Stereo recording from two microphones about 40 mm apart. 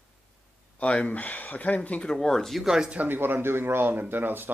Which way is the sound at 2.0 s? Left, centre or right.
Centre.